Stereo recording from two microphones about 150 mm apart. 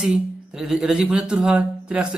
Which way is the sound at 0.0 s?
5° right (ahead or behind).